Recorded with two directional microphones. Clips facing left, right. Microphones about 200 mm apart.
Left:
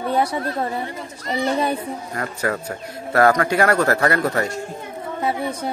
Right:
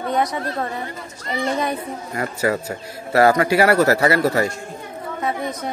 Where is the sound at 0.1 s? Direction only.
30° left (ahead or behind).